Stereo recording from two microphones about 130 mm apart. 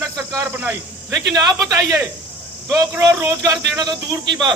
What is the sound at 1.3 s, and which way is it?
A man's voice, 30° right (ahead or behind).